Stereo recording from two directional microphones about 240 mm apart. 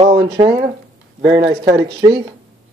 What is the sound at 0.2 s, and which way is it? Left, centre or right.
Speech, centre.